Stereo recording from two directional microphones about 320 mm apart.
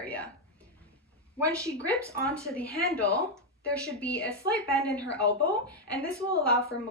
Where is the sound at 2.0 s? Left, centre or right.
Centre.